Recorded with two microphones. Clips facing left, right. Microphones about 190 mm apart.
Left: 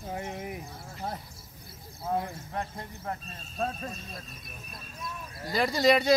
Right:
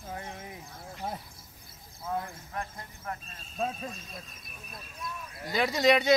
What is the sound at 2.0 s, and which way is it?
Speech, 25° left (ahead or behind).